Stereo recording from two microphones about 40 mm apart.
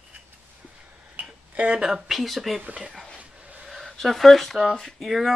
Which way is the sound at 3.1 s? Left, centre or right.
Right.